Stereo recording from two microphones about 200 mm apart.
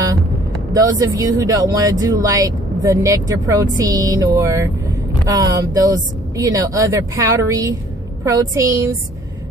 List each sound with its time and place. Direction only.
0.7 s speech: 15° right (ahead or behind)